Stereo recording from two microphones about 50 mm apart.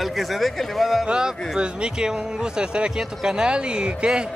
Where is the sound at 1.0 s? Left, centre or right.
Centre.